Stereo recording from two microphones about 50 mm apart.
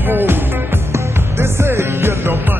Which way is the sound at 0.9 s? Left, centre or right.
Right.